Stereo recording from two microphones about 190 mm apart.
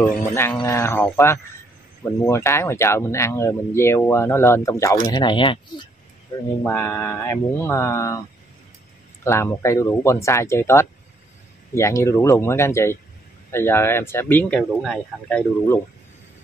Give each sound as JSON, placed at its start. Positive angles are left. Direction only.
{"t": 0.3, "sound": "speech", "side_deg": 10}
{"t": 6.6, "sound": "speech", "side_deg": 10}
{"t": 9.2, "sound": "speech", "side_deg": 15}